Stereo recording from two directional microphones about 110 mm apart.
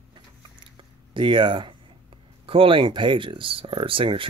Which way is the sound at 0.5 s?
50° right (ahead or behind).